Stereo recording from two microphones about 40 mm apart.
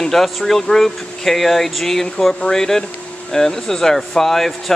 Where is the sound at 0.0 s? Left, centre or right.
Centre.